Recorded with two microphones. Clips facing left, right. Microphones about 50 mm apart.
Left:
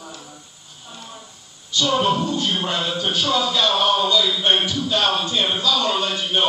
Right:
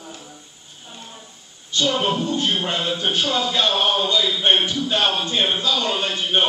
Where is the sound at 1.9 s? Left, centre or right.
Right.